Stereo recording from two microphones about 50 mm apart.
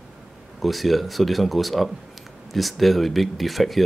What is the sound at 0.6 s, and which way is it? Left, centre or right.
Speech, centre.